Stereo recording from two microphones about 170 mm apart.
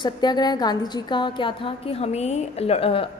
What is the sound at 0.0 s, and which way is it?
A woman's voice, 25° left (ahead or behind).